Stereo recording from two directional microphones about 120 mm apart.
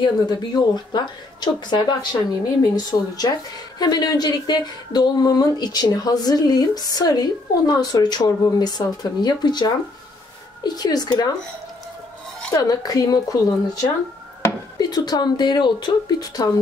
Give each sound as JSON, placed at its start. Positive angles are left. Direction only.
{"t": 0.0, "sound": "speech", "side_deg": 35}
{"t": 12.5, "sound": "speech", "side_deg": 30}